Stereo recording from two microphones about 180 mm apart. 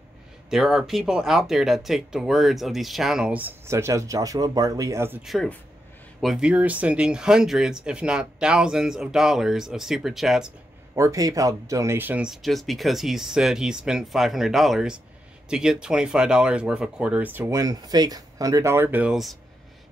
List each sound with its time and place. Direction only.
0.5 s speech: centre (ahead or behind)
5.2 s speech: centre (ahead or behind)
11.0 s speech: 20° right (ahead or behind)